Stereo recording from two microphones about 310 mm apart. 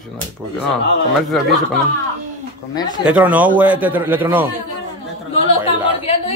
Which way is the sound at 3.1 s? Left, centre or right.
Centre.